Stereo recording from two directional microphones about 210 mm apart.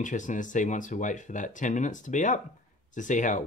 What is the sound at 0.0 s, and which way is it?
Speech, 35° left (ahead or behind).